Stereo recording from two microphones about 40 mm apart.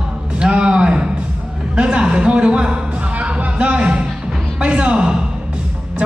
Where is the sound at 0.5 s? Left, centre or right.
Right.